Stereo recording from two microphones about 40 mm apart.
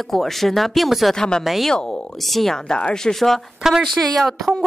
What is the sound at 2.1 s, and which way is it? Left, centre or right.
Speech, centre.